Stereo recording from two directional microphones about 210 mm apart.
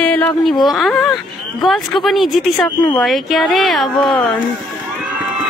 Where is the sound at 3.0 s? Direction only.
Centre (ahead or behind).